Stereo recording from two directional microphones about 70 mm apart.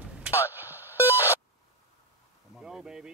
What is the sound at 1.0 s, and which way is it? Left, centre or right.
Music, left.